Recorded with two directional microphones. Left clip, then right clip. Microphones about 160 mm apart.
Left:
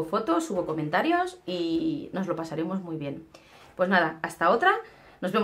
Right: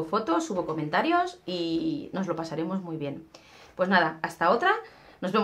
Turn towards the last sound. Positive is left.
turn(degrees=-5)  # may be behind; listen again after turning